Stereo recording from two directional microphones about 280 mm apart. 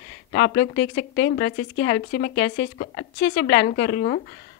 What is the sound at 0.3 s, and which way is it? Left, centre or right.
A woman's voice, left.